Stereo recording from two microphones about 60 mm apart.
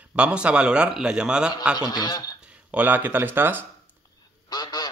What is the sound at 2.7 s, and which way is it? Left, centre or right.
Speech, right.